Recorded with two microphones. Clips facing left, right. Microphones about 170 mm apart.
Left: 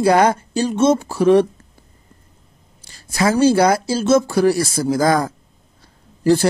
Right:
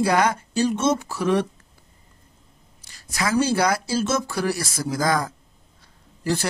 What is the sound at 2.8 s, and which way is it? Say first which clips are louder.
Speech: left 8 dB; 30° left (ahead or behind).